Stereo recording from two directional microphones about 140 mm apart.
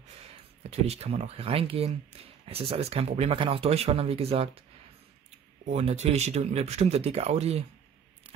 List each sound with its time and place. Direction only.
0.7 s speech: 45° right (ahead or behind)
5.7 s speech: 50° right (ahead or behind)